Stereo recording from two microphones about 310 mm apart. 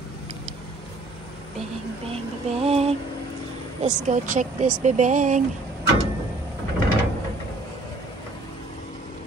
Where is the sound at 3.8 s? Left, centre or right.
Right.